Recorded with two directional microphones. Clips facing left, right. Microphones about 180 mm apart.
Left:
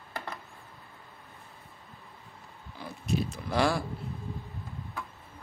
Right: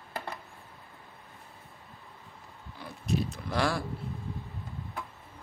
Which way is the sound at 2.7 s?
Centre (ahead or behind).